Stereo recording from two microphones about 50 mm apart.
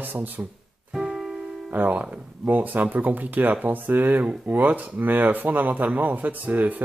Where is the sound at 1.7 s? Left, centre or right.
Right.